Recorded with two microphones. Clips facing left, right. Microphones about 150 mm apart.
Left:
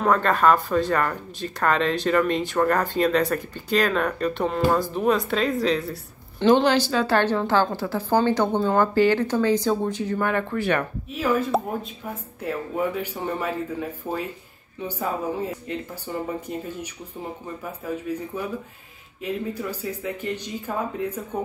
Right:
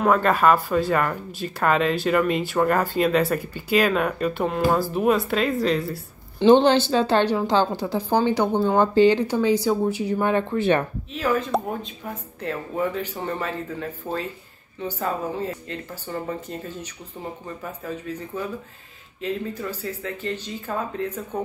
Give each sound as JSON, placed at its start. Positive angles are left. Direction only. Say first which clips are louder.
{"t": 0.0, "sound": "speech", "louder": "right 1 dB", "side_deg": -5}
{"t": 6.4, "sound": "speech", "louder": "right 3 dB", "side_deg": -30}
{"t": 11.1, "sound": "speech", "louder": "left 1 dB", "side_deg": 5}